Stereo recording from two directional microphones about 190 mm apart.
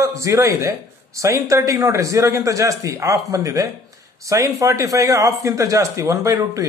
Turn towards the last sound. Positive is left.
turn(degrees=-15)  # may be behind; listen again after turning